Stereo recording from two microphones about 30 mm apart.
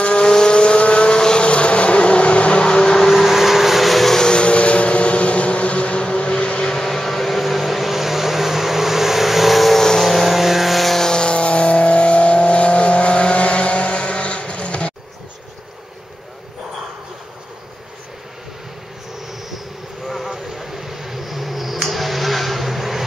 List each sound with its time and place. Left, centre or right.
0.0 s vehicle: left
2.8 s vehicle: centre
3.1 s vehicle: centre
3.3 s vehicle: centre
4.3 s vehicle: left
6.7 s a sound: centre
7.4 s vehicle: centre
11.1 s vehicle: left
20.1 s insect: centre
21.9 s a sound: centre